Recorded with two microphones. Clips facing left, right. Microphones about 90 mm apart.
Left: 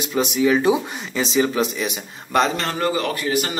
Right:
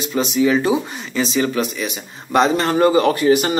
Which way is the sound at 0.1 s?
5° left (ahead or behind).